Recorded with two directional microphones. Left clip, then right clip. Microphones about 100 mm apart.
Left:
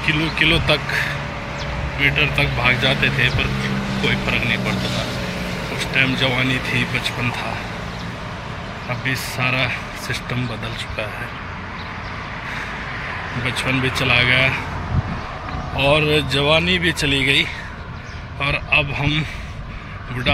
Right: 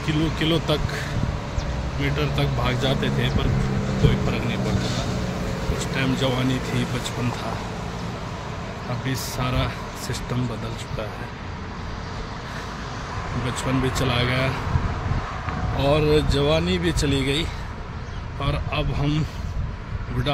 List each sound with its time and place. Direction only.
0.0 s speech: 35° right (ahead or behind)
4.1 s speech: 15° right (ahead or behind)
5.8 s speech: 25° right (ahead or behind)
9.0 s speech: 30° right (ahead or behind)
13.6 s speech: 30° right (ahead or behind)
15.8 s speech: 20° right (ahead or behind)
20.3 s a man's voice: 25° right (ahead or behind)